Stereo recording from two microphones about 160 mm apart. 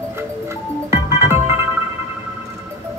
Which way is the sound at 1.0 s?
15° right (ahead or behind).